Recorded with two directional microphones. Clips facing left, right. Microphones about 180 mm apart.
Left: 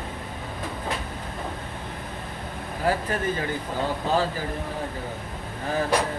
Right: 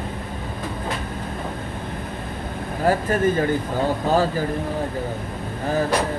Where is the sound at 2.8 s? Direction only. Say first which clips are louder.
Right 6 dB; 45° right (ahead or behind).